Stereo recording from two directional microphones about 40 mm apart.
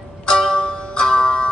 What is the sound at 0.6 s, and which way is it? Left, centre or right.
Music, left.